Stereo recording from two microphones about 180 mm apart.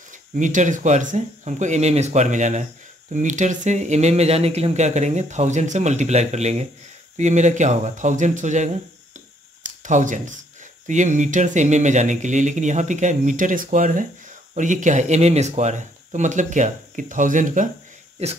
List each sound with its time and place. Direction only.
0.1 s speech: 45° right (ahead or behind)